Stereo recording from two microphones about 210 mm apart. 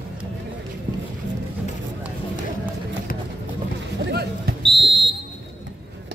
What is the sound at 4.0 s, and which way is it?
Basketball bounce, 50° right (ahead or behind).